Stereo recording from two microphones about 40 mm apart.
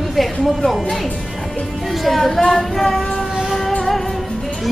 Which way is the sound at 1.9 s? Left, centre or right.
Centre.